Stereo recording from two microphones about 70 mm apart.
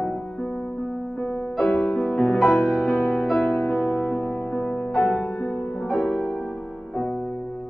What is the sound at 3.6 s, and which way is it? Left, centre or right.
Music, centre.